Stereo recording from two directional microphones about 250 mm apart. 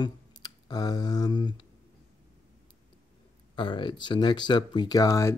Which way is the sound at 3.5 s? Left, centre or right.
Centre.